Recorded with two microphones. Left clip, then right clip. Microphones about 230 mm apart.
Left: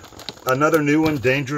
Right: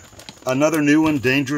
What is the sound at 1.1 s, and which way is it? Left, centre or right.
Speech, right.